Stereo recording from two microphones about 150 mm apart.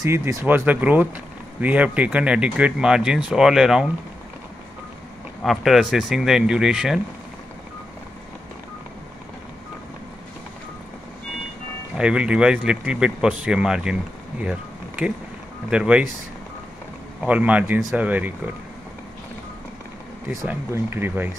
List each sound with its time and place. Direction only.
0.0 s speech: 20° right (ahead or behind); by 3.8 s centre (ahead or behind)
5.4 s speech: centre (ahead or behind)
12.0 s speech: 5° right (ahead or behind)
14.4 s a sound: 5° right (ahead or behind)
15.7 s speech: 5° right (ahead or behind)
17.2 s speech: 10° right (ahead or behind)
20.2 s speech: 15° right (ahead or behind)